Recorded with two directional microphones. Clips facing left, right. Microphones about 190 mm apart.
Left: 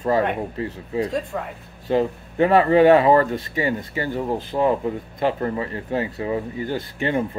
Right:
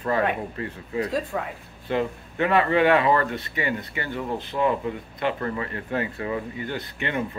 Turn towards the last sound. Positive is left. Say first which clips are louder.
# left 5 dB
turn(degrees=35)  # may be behind; listen again after turning